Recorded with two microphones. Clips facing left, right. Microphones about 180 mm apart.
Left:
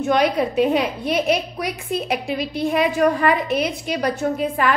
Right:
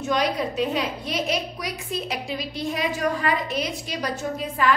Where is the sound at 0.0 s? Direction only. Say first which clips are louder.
Left 6 dB; 60° left (ahead or behind).